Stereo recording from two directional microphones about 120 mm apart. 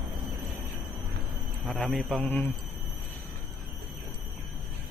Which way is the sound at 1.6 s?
10° left (ahead or behind).